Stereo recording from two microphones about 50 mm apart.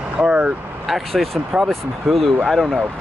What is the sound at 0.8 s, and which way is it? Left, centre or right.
Speech, centre.